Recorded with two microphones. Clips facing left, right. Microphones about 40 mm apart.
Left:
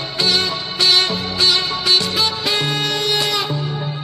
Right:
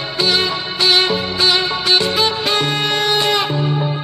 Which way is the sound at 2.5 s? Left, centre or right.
Right.